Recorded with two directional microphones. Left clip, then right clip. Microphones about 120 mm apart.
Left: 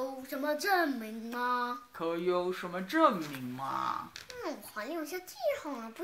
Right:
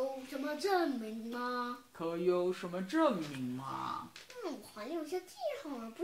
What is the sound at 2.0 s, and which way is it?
Speech, 40° right (ahead or behind).